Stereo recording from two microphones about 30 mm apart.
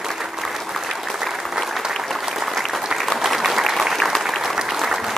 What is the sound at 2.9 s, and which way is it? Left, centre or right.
Applause, right.